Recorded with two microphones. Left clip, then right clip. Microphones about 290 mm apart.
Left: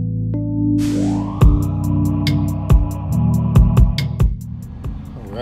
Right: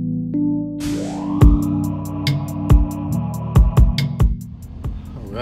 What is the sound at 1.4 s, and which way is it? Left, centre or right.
Music, centre.